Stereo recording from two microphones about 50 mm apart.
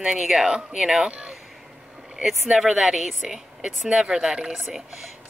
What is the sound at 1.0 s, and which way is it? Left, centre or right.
Speech, right.